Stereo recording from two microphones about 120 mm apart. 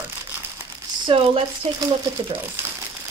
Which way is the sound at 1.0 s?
50° right (ahead or behind).